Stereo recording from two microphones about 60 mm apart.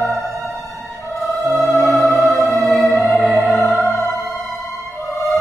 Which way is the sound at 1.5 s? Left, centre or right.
Centre.